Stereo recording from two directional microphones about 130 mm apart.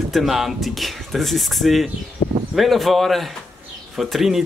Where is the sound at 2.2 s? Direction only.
30° left (ahead or behind).